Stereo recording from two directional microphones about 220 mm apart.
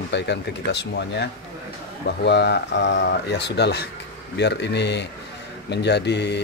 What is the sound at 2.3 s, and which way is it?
Speech, 50° left (ahead or behind).